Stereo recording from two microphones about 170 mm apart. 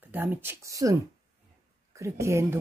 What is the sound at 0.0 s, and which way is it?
A woman's voice, 10° right (ahead or behind).